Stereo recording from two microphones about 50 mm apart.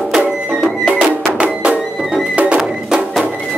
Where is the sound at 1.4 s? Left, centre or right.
Centre.